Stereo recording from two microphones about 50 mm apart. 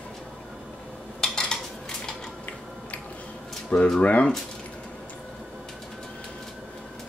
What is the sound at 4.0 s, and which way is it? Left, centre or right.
Speech, left.